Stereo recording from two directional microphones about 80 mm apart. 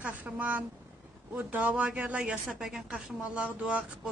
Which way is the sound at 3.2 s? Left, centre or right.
Centre.